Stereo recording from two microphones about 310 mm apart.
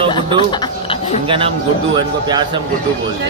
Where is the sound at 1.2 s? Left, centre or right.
Centre.